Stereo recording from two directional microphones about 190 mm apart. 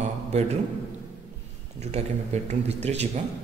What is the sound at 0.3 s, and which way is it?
Speech, 35° right (ahead or behind).